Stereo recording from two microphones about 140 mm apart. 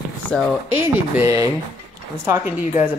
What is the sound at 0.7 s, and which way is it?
Speech, 15° right (ahead or behind).